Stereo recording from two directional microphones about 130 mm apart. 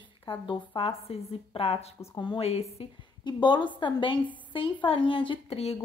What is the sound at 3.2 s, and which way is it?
Speech, 35° left (ahead or behind).